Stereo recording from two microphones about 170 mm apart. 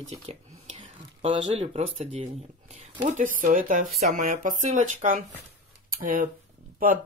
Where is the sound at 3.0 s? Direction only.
50° right (ahead or behind).